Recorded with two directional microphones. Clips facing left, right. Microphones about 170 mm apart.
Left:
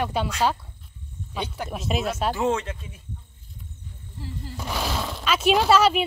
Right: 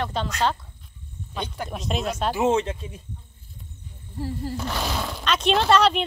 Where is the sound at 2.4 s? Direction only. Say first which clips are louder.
Right 7 dB; 25° right (ahead or behind).